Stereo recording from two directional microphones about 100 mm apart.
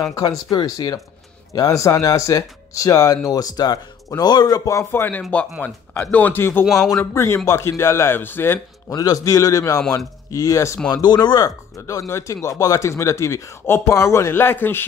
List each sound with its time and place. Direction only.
0.0 s a man's voice: 30° left (ahead or behind)
6.6 s speech: centre (ahead or behind)
7.2 s speech: 25° left (ahead or behind)
8.9 s a man's voice: 40° left (ahead or behind)
10.9 s speech: 45° left (ahead or behind); by 14.9 s 20° left (ahead or behind)